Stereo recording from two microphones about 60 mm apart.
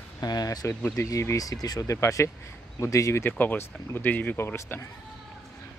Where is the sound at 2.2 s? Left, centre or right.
Left.